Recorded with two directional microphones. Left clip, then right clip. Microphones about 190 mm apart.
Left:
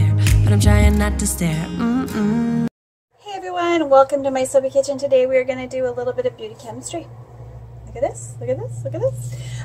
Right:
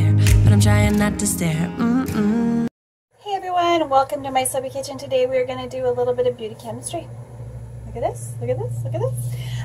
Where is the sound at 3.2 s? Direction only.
10° left (ahead or behind).